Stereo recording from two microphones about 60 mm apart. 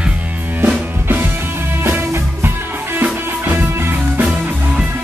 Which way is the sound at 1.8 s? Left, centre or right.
Right.